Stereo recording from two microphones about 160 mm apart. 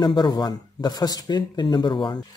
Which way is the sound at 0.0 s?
25° left (ahead or behind).